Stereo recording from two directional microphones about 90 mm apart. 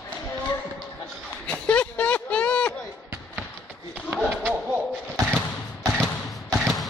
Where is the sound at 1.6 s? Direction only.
15° left (ahead or behind).